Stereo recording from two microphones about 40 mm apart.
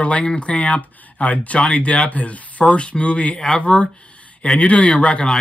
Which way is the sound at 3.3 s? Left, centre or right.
Centre.